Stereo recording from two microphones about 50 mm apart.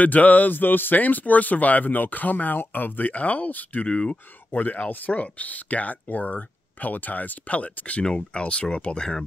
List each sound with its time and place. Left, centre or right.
0.0 s speech: left
3.8 s speech: left
4.5 s speech: left
8.0 s speech: centre